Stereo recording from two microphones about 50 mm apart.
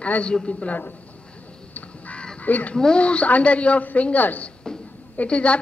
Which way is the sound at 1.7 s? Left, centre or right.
Left.